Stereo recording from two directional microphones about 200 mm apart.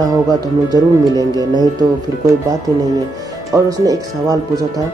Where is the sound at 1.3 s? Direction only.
20° left (ahead or behind).